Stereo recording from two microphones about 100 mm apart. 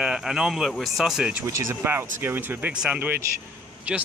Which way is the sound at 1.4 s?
30° right (ahead or behind).